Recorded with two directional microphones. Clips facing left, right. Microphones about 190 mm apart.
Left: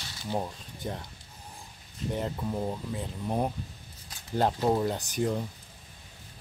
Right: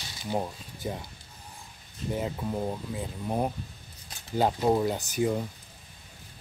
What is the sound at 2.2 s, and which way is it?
Speech, 5° right (ahead or behind).